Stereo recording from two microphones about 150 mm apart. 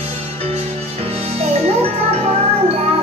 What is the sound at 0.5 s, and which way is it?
Music, 45° right (ahead or behind).